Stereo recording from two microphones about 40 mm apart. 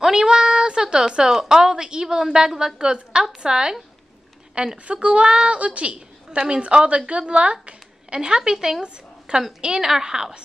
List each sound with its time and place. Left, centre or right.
0.0 s a woman's voice: centre; by 5.9 s right
5.9 s a woman's voice: right
8.8 s a sound: right
9.6 s a woman's voice: centre